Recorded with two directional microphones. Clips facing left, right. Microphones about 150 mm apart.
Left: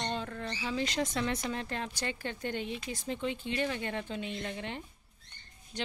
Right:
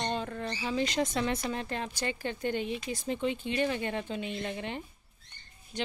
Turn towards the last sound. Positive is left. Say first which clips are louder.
# right 3 dB
turn(degrees=-15)  # may be behind; listen again after turning